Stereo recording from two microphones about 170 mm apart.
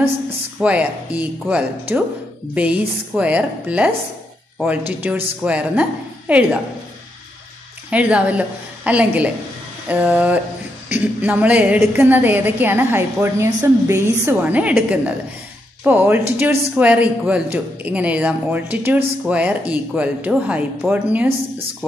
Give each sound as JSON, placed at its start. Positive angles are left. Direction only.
{"t": 0.6, "sound": "speech", "side_deg": -10}
{"t": 7.9, "sound": "speech", "side_deg": -10}